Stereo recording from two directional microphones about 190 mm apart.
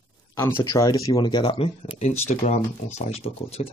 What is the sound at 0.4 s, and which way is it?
Speech, 15° left (ahead or behind).